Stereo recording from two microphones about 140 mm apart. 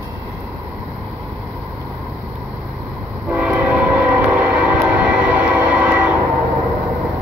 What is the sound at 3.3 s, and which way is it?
Train, 10° right (ahead or behind).